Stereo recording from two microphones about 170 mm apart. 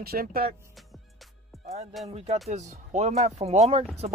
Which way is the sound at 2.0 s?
40° right (ahead or behind).